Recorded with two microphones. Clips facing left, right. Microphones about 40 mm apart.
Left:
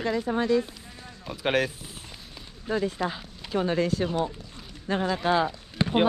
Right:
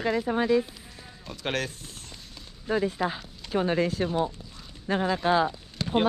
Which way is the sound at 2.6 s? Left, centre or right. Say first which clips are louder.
Right 1 dB; right.